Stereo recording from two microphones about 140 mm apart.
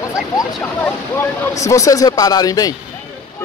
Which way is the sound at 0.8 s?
15° left (ahead or behind).